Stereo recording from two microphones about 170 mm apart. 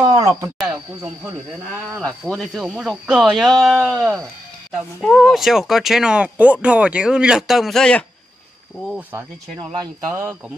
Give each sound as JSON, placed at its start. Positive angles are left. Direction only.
{"t": 0.1, "sound": "a sound", "side_deg": -20}
{"t": 0.6, "sound": "speech", "side_deg": -5}
{"t": 9.6, "sound": "speech", "side_deg": -30}